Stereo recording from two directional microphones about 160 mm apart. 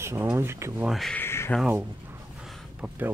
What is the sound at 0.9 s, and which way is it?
Speech, centre (ahead or behind).